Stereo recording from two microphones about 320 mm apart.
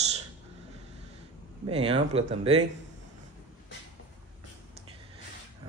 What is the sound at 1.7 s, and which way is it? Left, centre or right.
Speech, centre.